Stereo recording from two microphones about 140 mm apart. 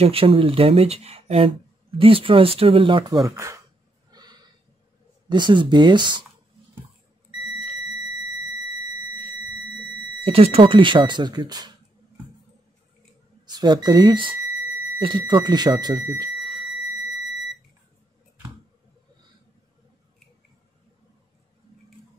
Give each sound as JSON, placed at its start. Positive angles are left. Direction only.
{"t": 0.0, "sound": "speech", "side_deg": -40}
{"t": 4.1, "sound": "a sound", "side_deg": -30}
{"t": 5.3, "sound": "speech", "side_deg": -35}
{"t": 10.2, "sound": "speech", "side_deg": -45}
{"t": 13.5, "sound": "speech", "side_deg": -30}
{"t": 17.0, "sound": "smoke detector", "side_deg": 0}